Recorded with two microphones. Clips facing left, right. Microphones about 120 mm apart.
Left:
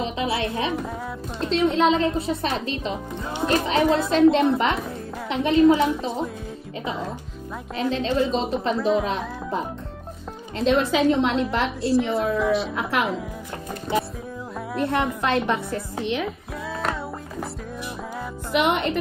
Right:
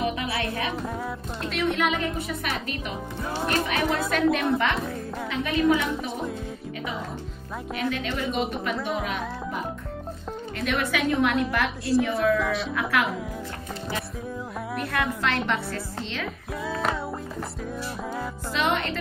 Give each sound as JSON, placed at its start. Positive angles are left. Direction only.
{"t": 0.0, "sound": "music", "side_deg": 25}
{"t": 1.5, "sound": "a woman's voice", "side_deg": 25}
{"t": 7.7, "sound": "a woman's voice", "side_deg": 25}
{"t": 8.7, "sound": "speech", "side_deg": 0}
{"t": 9.0, "sound": "speech", "side_deg": 30}
{"t": 10.6, "sound": "a woman's voice", "side_deg": 25}
{"t": 12.4, "sound": "speech", "side_deg": 0}
{"t": 12.7, "sound": "a woman's voice", "side_deg": 25}
{"t": 14.8, "sound": "a woman's voice", "side_deg": 25}
{"t": 18.5, "sound": "a woman's voice", "side_deg": 20}